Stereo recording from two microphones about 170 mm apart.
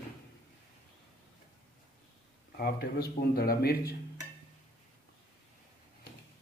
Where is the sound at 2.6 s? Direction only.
65° left (ahead or behind).